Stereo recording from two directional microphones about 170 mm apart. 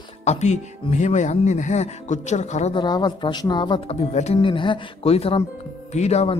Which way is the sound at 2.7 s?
25° left (ahead or behind).